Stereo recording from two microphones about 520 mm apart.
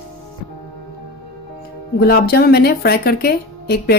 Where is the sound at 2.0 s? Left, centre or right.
Centre.